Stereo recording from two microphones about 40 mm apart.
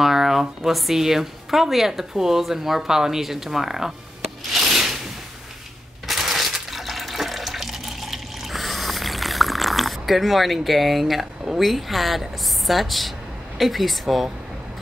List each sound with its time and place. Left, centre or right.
0.0 s speech: centre
4.5 s a sound: centre
6.0 s water: centre
11.6 s a woman's voice: centre